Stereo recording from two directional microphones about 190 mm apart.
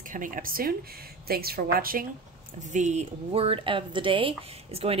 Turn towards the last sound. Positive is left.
turn(degrees=-30)  # may be behind; listen again after turning